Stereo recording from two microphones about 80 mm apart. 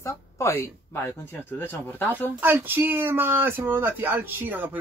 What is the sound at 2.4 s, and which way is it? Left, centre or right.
Speech, right.